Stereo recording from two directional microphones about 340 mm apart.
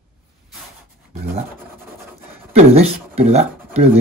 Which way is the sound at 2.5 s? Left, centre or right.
Centre.